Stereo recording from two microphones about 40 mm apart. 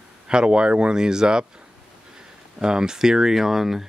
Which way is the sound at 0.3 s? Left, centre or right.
Right.